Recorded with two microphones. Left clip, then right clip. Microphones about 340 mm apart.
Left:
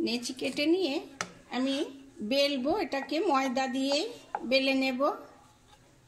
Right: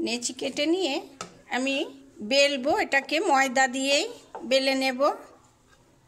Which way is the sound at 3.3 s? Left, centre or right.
Right.